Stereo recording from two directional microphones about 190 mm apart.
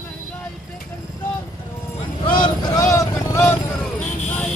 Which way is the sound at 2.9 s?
15° left (ahead or behind).